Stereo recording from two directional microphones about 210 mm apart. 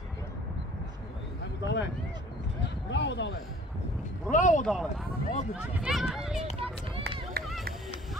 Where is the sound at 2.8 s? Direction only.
55° left (ahead or behind).